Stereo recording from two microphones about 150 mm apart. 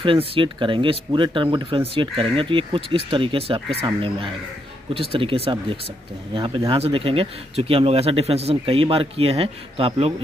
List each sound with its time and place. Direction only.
0.0 s speech: 35° right (ahead or behind)
4.9 s speech: 40° right (ahead or behind)